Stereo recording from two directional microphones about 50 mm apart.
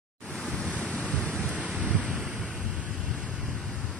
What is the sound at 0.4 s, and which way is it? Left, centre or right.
Waves, centre.